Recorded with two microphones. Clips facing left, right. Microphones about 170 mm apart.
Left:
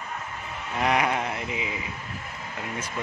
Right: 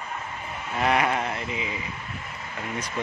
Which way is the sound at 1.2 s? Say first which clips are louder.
Even; 15° left (ahead or behind).